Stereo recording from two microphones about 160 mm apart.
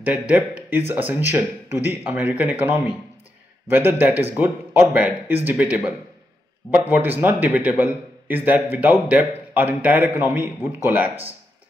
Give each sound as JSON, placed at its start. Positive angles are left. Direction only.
{"t": 0.1, "sound": "speech", "side_deg": -10}